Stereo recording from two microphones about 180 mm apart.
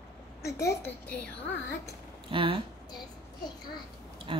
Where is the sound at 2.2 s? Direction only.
30° right (ahead or behind).